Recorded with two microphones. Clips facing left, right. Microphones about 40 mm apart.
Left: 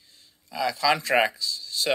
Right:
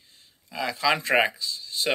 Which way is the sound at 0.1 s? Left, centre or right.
Right.